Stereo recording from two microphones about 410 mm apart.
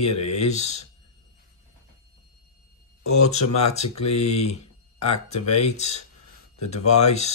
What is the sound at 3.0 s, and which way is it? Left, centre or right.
Speech, left.